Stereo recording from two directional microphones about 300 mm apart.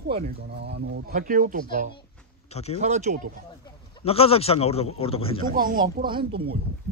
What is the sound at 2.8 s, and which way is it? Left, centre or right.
Speech, right.